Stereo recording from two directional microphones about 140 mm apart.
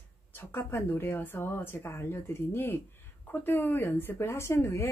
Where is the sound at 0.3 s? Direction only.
15° left (ahead or behind).